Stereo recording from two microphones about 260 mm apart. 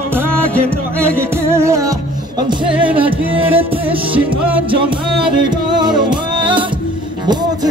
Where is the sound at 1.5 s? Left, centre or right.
Centre.